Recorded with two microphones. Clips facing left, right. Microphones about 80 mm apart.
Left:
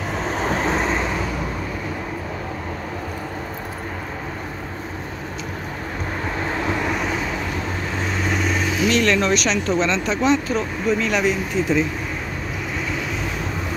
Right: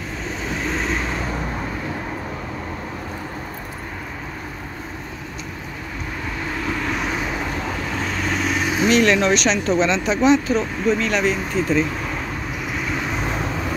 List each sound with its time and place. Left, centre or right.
6.7 s vehicle: centre
8.9 s speech: centre
9.3 s speech: centre
10.9 s speech: centre